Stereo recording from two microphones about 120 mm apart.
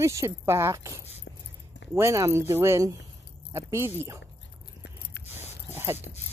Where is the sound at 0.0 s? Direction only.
25° right (ahead or behind).